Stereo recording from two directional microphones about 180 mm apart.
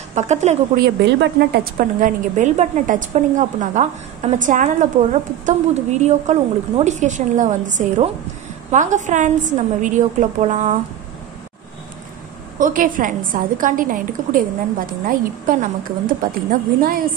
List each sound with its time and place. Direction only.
0.1 s a woman's voice: 40° right (ahead or behind)
0.7 s a woman's voice: 70° right (ahead or behind); by 10.8 s 40° right (ahead or behind)
12.5 s a woman's voice: 50° right (ahead or behind)